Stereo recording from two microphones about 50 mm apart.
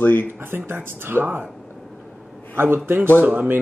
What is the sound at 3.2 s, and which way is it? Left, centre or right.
Speech, right.